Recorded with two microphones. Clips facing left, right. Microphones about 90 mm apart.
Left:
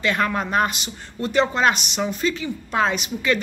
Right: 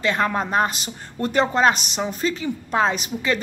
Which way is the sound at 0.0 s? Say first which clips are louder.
Right 1 dB; 30° right (ahead or behind).